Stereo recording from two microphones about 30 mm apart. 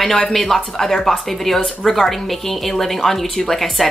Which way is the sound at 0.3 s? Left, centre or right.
Centre.